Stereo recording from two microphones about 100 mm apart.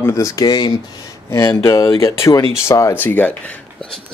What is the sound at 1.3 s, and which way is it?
Speech, 25° left (ahead or behind).